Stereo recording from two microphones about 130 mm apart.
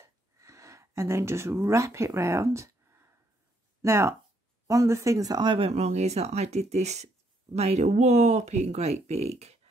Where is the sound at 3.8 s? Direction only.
20° right (ahead or behind); by 9.5 s 55° right (ahead or behind).